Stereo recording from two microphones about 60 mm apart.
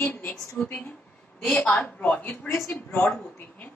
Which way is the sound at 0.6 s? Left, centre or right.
Centre.